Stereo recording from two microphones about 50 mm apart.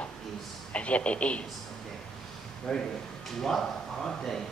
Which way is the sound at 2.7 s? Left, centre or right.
Centre.